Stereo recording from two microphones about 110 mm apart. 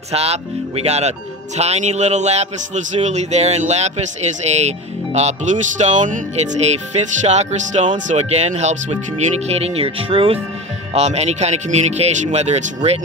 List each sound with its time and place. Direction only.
0.1 s a man's voice: 70° right (ahead or behind)
9.5 s speech: 65° right (ahead or behind)
10.9 s speech: 85° right